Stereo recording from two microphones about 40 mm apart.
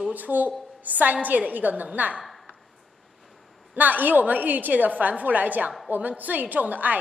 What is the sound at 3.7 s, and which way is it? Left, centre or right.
A woman's voice, right.